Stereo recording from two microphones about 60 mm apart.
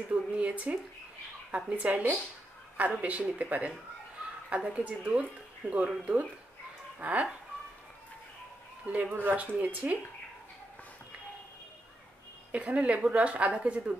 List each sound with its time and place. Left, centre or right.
0.1 s speech: right
8.8 s speech: right
12.5 s speech: right